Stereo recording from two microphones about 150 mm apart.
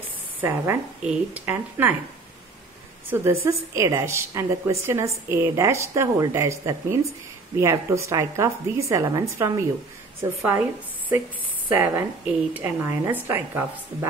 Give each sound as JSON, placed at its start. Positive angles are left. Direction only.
{"t": 0.4, "sound": "a woman's voice", "side_deg": -15}
{"t": 3.1, "sound": "a woman's voice", "side_deg": -15}
{"t": 11.7, "sound": "a woman's voice", "side_deg": -15}